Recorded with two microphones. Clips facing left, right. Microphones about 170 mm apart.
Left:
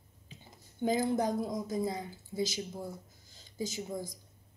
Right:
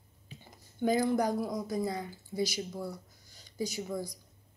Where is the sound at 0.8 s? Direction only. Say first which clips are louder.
Right 2 dB; 20° left (ahead or behind).